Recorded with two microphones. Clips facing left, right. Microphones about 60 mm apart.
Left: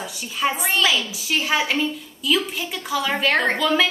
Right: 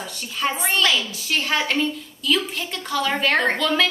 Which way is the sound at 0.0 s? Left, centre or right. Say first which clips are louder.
Left 2 dB; centre.